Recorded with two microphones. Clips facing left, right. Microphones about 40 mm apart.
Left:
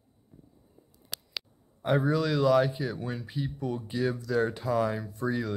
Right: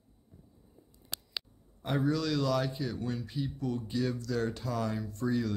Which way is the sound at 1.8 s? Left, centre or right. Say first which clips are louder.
Left 4 dB; centre.